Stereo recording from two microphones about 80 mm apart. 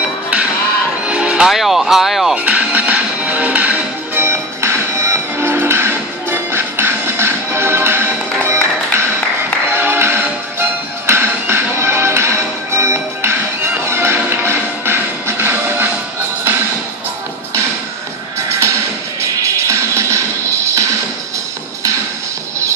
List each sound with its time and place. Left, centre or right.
1.0 s music: centre
1.5 s a sound: centre
2.3 s music: centre
9.7 s music: right
18.5 s music: right